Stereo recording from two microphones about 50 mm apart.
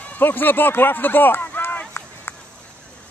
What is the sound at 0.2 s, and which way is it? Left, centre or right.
Speech, left.